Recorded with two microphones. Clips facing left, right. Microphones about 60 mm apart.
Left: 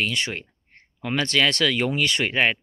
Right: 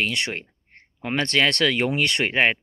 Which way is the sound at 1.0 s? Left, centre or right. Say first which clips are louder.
Even; right.